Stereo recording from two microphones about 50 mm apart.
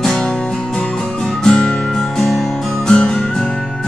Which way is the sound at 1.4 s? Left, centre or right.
Centre.